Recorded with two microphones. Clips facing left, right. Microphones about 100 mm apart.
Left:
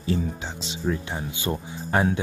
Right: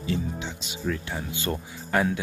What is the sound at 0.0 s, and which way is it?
Speech, 35° left (ahead or behind).